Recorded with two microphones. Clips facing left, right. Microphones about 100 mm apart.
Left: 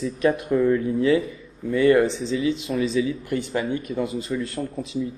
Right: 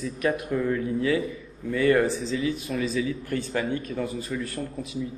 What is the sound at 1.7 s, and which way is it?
Speech, 25° left (ahead or behind).